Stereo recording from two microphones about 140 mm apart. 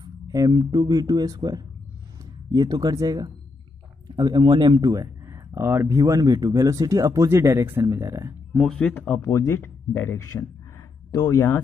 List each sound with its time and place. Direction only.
0.0 s speech: 25° right (ahead or behind)
8.5 s speech: 5° left (ahead or behind)
9.2 s speech: 20° left (ahead or behind)